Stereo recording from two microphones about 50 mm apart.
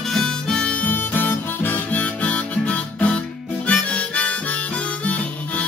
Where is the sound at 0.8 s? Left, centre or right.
Left.